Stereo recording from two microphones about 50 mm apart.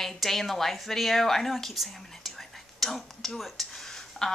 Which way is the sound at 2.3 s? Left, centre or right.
Centre.